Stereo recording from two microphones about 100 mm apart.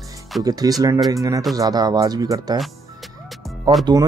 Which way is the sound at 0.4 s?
40° right (ahead or behind).